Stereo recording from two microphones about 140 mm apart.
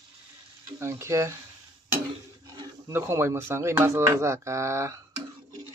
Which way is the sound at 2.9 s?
20° right (ahead or behind).